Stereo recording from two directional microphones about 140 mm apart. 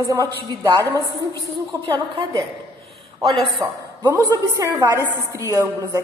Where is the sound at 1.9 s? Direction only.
35° right (ahead or behind).